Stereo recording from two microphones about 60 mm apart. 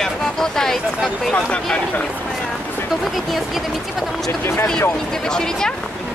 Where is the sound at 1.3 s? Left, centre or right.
Centre.